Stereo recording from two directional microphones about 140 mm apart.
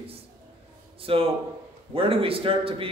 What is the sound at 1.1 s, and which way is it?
Speech, 40° right (ahead or behind).